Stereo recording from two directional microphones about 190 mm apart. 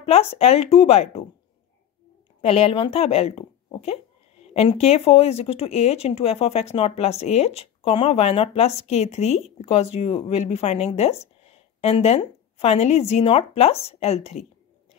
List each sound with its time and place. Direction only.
0.0 s speech: 35° left (ahead or behind)
2.4 s speech: 35° left (ahead or behind)